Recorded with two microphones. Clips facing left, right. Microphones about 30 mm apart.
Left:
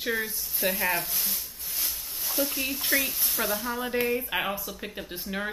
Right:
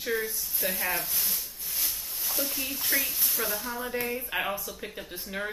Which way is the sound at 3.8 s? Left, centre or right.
Left.